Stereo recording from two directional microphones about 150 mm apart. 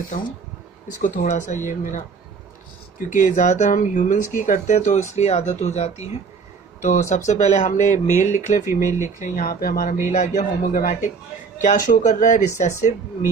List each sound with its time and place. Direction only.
0.8 s speech: 60° left (ahead or behind)
3.0 s speech: 60° left (ahead or behind)
8.8 s speech: 20° right (ahead or behind)
9.2 s a man's voice: 65° left (ahead or behind)
11.6 s speech: 55° left (ahead or behind)